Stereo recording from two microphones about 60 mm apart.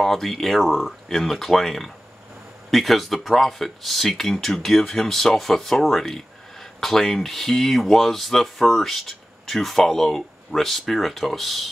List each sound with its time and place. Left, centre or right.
0.0 s speech: centre